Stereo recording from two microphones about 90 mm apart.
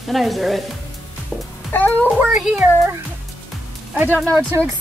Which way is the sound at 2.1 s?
5° right (ahead or behind).